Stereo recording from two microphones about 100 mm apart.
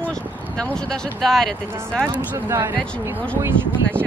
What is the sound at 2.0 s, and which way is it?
Speech, 25° right (ahead or behind).